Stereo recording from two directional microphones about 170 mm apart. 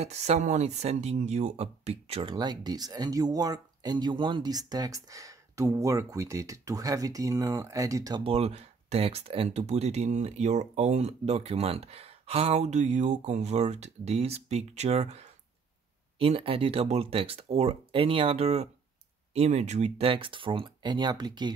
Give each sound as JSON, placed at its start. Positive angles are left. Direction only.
{"t": 0.0, "sound": "speech", "side_deg": -40}
{"t": 8.2, "sound": "speech", "side_deg": -35}